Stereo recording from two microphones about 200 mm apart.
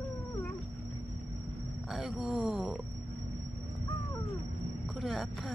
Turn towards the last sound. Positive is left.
turn(degrees=0)  # may be behind; listen again after turning